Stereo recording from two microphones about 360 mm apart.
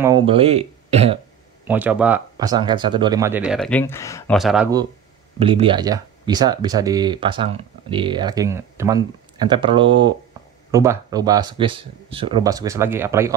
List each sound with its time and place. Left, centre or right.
0.0 s speech: centre
1.7 s speech: centre